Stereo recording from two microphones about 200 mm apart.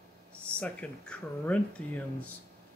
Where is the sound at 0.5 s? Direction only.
5° left (ahead or behind).